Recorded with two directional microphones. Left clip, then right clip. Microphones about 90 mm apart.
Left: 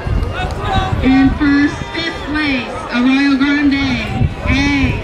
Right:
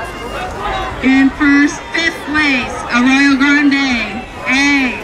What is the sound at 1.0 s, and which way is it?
Music, 30° right (ahead or behind).